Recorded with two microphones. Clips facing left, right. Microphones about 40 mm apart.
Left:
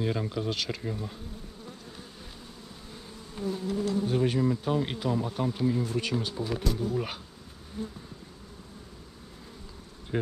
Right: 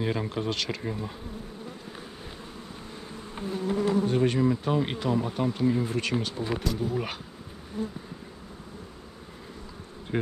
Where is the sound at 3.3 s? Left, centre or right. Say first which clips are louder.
Right 2 dB; right.